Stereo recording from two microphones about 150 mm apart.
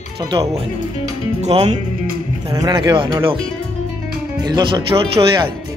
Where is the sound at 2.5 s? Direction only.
25° right (ahead or behind).